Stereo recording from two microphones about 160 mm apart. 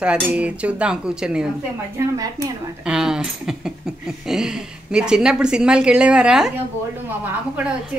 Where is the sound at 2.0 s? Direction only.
15° right (ahead or behind).